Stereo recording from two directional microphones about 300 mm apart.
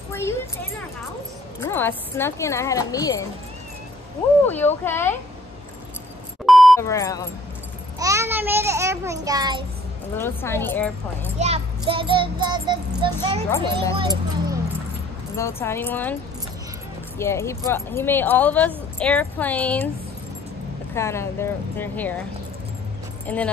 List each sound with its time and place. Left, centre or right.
0.1 s a woman's voice: centre
4.5 s a woman's voice: centre
6.4 s beep: centre
6.9 s a woman's voice: centre
8.0 s a child's voice: centre
10.1 s a woman's voice: centre
11.3 s a child's voice: right
15.3 s a woman's voice: centre
17.2 s a woman's voice: centre
20.9 s a woman's voice: centre
23.2 s speech: centre